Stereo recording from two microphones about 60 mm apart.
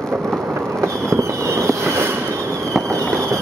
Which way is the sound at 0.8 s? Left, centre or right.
Right.